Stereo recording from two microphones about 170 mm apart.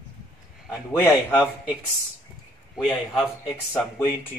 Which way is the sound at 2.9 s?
15° left (ahead or behind).